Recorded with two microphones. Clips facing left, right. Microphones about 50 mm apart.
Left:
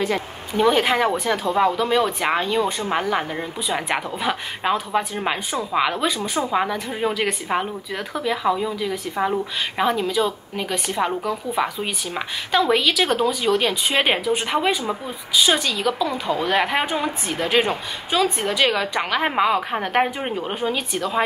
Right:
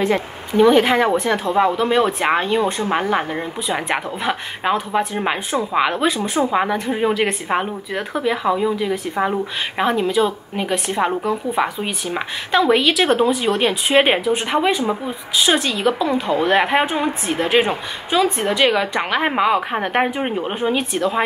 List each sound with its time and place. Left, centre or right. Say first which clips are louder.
0.6 s a woman's voice: right 5 dB; centre